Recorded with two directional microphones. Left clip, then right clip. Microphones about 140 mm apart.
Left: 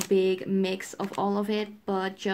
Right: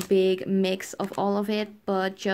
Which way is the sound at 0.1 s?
35° right (ahead or behind).